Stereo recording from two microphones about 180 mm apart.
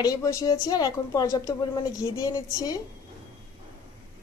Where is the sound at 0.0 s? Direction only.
20° left (ahead or behind).